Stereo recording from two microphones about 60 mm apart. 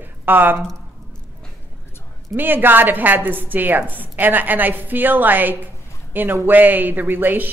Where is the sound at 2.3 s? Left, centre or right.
Right.